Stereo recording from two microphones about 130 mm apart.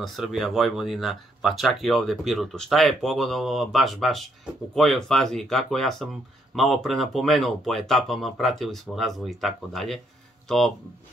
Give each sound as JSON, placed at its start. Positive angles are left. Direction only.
{"t": 0.0, "sound": "speech", "side_deg": 0}